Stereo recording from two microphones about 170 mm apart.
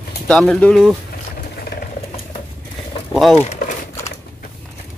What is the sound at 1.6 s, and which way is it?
Vehicle, 65° left (ahead or behind).